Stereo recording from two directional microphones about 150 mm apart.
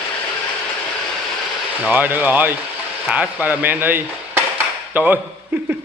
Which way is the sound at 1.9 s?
10° right (ahead or behind).